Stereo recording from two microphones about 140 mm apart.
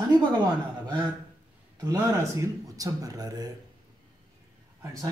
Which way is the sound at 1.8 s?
25° right (ahead or behind).